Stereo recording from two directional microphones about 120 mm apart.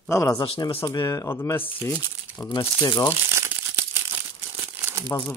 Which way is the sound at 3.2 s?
20° right (ahead or behind).